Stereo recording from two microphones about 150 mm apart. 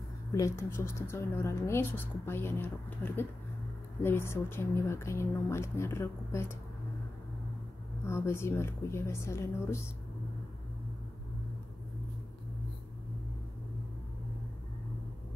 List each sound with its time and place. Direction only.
0.3 s a woman's voice: 20° left (ahead or behind)
8.0 s a woman's voice: 15° left (ahead or behind)